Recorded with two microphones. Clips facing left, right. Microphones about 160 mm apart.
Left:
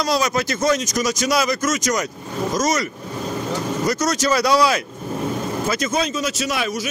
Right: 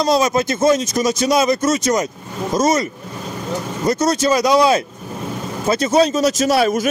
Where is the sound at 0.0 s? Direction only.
25° right (ahead or behind).